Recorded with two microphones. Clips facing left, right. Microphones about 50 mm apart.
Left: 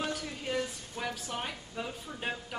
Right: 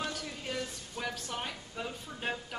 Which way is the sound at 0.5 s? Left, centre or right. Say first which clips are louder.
Left 5 dB; centre.